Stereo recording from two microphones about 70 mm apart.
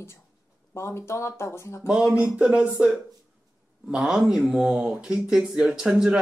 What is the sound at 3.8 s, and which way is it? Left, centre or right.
Speech, centre.